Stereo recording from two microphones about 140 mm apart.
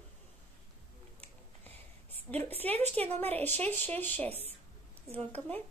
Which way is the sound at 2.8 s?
50° right (ahead or behind).